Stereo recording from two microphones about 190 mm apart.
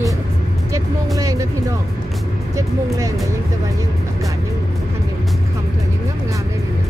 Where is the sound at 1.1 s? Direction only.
15° right (ahead or behind).